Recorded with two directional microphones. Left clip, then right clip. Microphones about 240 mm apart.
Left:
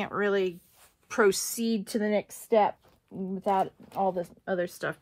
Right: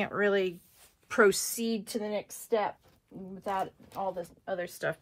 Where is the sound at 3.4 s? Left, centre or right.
Left.